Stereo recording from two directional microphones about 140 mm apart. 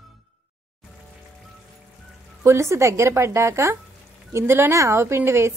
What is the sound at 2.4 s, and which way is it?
A woman's voice, 20° right (ahead or behind).